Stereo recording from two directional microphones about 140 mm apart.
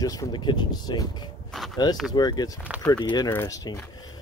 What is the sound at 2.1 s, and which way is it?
Speech, 30° left (ahead or behind).